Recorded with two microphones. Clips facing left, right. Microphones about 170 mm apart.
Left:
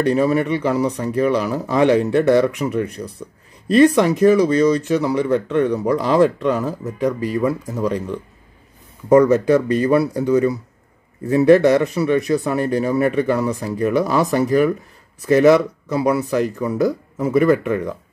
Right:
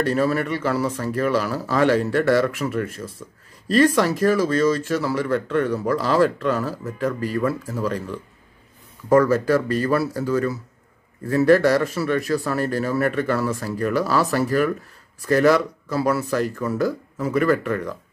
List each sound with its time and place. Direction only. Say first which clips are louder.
0.0 s speech: left 4 dB; 15° left (ahead or behind)